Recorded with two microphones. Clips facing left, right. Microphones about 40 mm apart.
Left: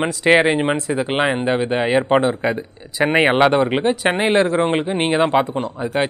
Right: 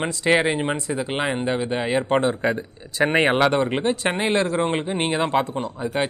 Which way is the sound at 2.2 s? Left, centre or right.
Centre.